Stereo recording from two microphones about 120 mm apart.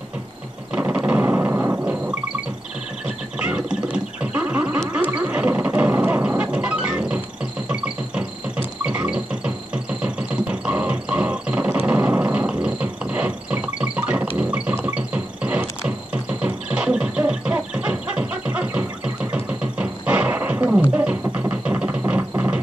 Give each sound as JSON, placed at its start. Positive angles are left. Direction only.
{"t": 0.7, "sound": "a sound", "side_deg": -10}
{"t": 3.3, "sound": "a sound", "side_deg": -10}
{"t": 7.6, "sound": "synthesizer", "side_deg": -10}
{"t": 10.0, "sound": "music", "side_deg": -10}
{"t": 19.3, "sound": "roaring cats", "side_deg": -10}
{"t": 20.9, "sound": "music", "side_deg": -10}
{"t": 22.3, "sound": "mechanisms", "side_deg": -15}